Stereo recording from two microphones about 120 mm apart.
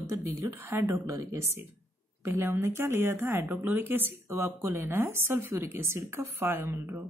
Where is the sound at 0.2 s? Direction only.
25° right (ahead or behind).